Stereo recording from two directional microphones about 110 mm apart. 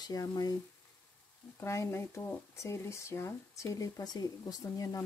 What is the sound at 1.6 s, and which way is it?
Speech, 25° left (ahead or behind).